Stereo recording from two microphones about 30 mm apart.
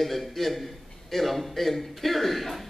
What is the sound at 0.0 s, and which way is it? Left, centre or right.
A man's voice, centre.